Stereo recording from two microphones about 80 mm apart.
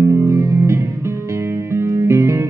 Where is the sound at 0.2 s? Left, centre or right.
Right.